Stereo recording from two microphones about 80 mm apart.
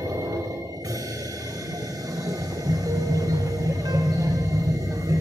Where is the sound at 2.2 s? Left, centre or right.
Right.